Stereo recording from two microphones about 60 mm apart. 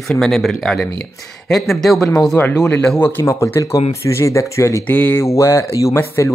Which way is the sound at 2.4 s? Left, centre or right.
Left.